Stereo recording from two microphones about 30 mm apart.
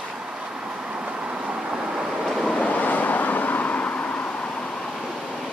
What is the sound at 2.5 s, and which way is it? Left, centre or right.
Vehicle, left.